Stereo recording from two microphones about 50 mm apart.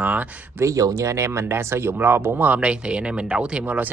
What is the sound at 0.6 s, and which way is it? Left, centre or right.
Speech, right.